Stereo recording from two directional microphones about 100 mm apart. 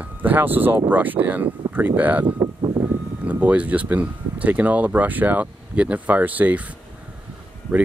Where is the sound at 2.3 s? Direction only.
60° right (ahead or behind).